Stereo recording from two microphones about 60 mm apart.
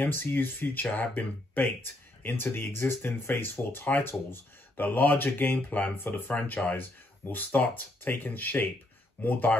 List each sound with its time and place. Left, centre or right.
0.0 s speech: left